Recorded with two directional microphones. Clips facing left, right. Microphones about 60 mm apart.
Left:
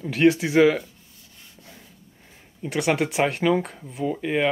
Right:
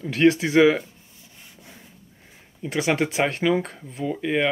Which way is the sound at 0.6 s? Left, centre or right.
Centre.